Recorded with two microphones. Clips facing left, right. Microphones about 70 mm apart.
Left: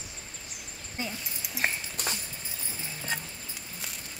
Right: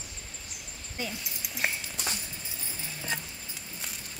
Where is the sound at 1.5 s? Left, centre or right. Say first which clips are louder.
Left 1 dB; left.